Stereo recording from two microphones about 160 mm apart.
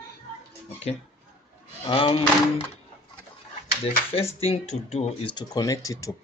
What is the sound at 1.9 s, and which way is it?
Speech, 35° left (ahead or behind).